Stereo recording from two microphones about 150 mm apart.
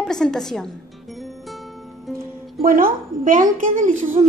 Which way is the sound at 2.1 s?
70° right (ahead or behind).